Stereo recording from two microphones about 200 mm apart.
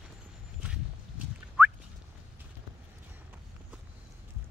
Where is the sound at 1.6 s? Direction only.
10° right (ahead or behind).